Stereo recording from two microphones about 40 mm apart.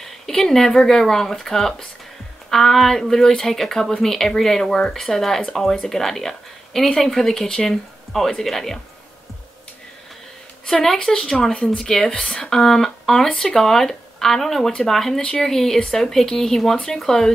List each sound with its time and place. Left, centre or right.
0.0 s speech: centre
10.7 s speech: centre